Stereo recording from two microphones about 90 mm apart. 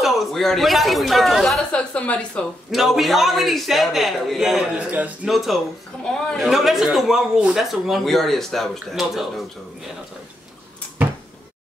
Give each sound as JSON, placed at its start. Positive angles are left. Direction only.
{"t": 0.0, "sound": "a man's voice", "side_deg": 5}
{"t": 1.7, "sound": "a woman's voice", "side_deg": 15}
{"t": 2.7, "sound": "a man's voice", "side_deg": 0}
{"t": 4.7, "sound": "a man's voice", "side_deg": -15}
{"t": 5.2, "sound": "a man's voice", "side_deg": -5}